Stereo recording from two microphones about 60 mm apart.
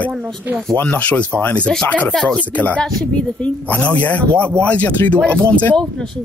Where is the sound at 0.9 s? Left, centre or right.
Left.